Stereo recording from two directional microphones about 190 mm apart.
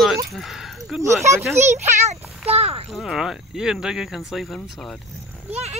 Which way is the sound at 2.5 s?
30° right (ahead or behind).